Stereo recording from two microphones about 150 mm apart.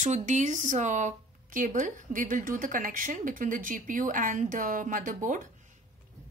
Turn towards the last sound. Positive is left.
turn(degrees=-60)  # may be behind; listen again after turning